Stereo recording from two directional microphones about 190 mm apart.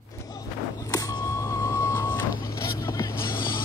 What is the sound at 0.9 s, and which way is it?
Vehicle, 20° left (ahead or behind).